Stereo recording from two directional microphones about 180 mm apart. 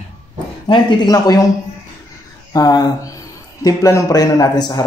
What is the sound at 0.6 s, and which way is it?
Speech, 20° left (ahead or behind).